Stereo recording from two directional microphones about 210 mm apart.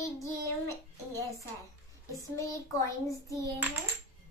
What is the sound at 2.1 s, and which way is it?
A child's voice, 15° left (ahead or behind).